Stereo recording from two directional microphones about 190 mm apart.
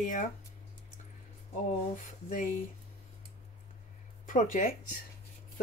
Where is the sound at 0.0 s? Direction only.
40° left (ahead or behind).